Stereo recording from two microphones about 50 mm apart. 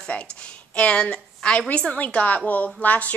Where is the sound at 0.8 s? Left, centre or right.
Left.